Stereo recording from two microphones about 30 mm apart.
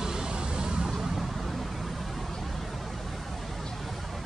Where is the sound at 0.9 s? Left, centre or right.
Centre.